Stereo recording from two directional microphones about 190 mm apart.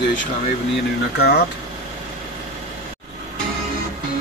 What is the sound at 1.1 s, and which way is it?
Speech, 60° left (ahead or behind).